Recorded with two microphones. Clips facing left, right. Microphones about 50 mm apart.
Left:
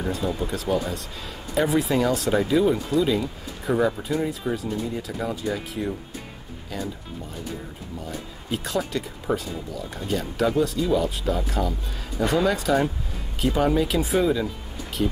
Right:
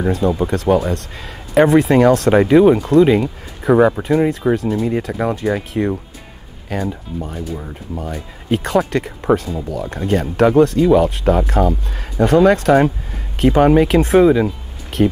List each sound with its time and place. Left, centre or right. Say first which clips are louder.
0.5 s a man's voice: right 9 dB; right
4.6 s a man's voice: right 10 dB; right
6.7 s a man's voice: right 9 dB; right
8.5 s a man's voice: right 10 dB; right